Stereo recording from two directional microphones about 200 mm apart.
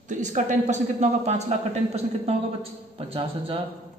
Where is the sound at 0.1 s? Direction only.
40° right (ahead or behind).